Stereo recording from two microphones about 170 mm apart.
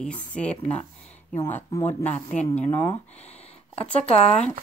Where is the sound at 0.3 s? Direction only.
5° left (ahead or behind).